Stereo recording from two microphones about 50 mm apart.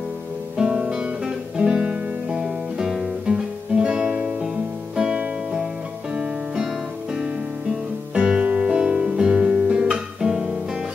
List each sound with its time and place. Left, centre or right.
0.6 s guitar: centre
4.9 s music: centre
8.1 s music: centre